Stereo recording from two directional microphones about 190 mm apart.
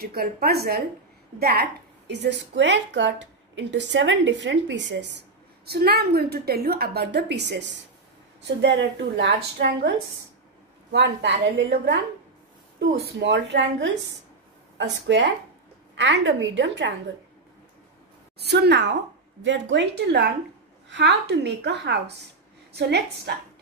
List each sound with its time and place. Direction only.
0.0 s a woman's voice: 50° right (ahead or behind); by 5.2 s 65° right (ahead or behind)
5.7 s a woman's voice: 55° right (ahead or behind)
18.4 s a woman's voice: 60° right (ahead or behind)